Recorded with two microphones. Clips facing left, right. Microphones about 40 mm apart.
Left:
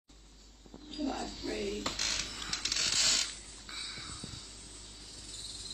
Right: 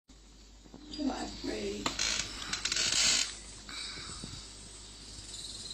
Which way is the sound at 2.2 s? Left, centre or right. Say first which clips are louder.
Even; centre.